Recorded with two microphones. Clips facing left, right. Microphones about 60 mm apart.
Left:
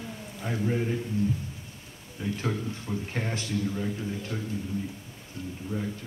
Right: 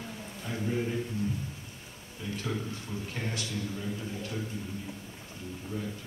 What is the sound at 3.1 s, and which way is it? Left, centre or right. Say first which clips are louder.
Speech: left 4 dB; left.